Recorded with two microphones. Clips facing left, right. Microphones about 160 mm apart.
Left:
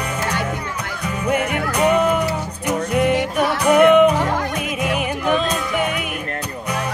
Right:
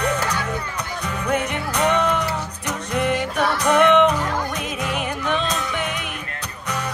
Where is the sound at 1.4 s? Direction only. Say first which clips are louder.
Left 4 dB; 55° left (ahead or behind).